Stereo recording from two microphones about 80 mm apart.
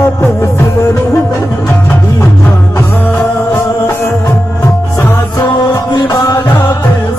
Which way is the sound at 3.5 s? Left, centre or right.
Left.